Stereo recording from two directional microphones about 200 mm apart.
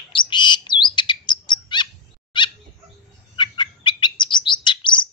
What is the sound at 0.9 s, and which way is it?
Chirp, 20° left (ahead or behind).